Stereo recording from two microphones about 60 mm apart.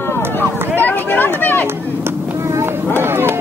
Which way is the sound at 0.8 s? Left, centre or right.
Left.